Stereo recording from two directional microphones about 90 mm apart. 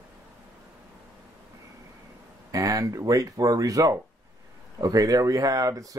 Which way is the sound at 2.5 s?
40° right (ahead or behind).